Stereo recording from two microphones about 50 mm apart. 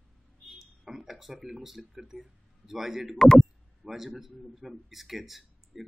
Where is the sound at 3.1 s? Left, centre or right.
Centre.